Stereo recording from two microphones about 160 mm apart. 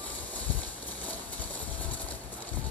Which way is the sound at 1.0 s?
10° left (ahead or behind).